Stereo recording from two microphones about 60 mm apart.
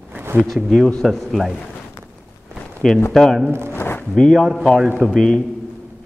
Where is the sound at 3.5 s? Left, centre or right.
Right.